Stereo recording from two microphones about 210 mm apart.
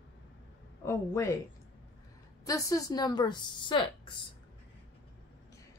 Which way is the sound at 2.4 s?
15° left (ahead or behind).